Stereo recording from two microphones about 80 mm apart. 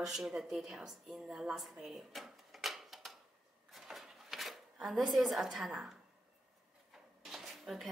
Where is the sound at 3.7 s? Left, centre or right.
Centre.